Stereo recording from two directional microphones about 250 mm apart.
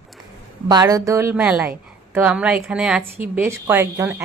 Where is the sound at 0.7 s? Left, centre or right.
Centre.